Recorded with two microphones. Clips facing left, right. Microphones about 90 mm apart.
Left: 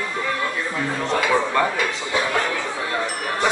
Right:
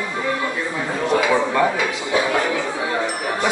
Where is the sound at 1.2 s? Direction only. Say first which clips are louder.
Right 1 dB; 10° right (ahead or behind).